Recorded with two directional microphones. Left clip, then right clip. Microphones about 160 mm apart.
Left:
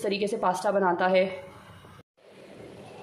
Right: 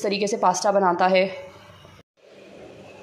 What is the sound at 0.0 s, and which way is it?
A woman's voice, 10° right (ahead or behind).